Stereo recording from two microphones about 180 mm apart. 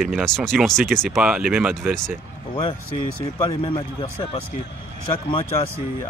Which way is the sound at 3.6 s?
30° left (ahead or behind).